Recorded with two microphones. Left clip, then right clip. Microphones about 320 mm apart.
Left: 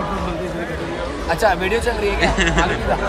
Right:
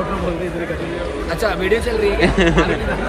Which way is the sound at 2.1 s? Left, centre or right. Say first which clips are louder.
Right 2 dB; centre.